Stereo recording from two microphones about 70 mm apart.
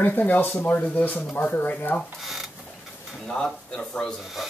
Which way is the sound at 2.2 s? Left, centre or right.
Centre.